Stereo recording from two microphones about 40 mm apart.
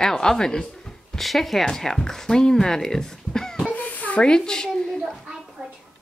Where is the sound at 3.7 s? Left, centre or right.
Left.